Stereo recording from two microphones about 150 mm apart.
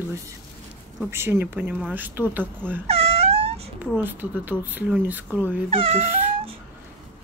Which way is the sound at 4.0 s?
10° right (ahead or behind).